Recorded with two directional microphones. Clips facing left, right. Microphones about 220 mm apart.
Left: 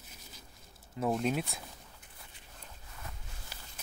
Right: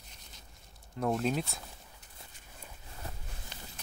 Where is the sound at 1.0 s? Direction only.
Centre (ahead or behind).